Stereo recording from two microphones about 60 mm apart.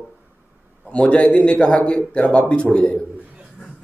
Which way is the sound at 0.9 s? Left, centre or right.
Left.